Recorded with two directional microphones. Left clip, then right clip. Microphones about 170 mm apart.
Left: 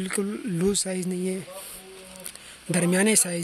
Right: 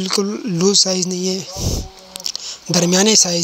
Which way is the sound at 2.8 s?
15° right (ahead or behind).